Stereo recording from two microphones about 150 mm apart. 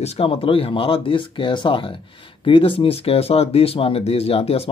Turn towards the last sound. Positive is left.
turn(degrees=40)  # may be behind; listen again after turning